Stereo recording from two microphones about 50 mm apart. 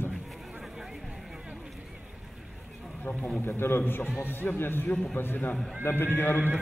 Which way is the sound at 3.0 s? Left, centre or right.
Left.